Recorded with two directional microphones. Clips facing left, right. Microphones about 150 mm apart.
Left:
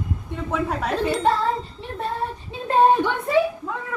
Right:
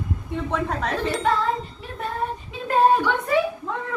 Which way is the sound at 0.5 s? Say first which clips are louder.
Left 2 dB; 5° left (ahead or behind).